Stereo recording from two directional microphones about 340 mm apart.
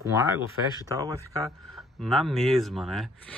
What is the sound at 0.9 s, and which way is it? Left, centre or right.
Speech, centre.